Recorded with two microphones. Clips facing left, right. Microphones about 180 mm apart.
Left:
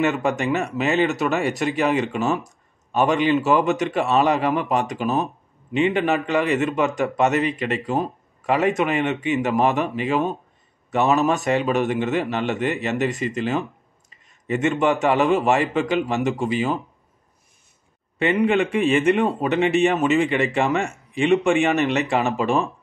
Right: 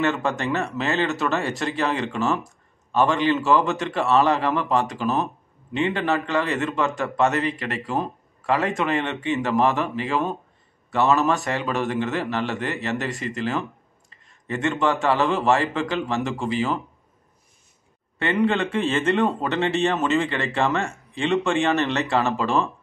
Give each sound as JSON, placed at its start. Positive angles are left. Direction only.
{"t": 0.0, "sound": "a man's voice", "side_deg": 15}
{"t": 18.2, "sound": "speech", "side_deg": 15}